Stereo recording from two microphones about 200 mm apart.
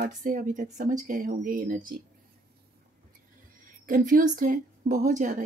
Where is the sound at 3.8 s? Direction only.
40° right (ahead or behind).